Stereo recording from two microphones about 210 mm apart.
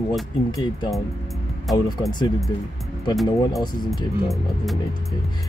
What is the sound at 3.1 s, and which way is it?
Music, centre (ahead or behind).